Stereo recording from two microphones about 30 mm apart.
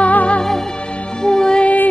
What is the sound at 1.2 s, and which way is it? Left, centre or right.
Music, left.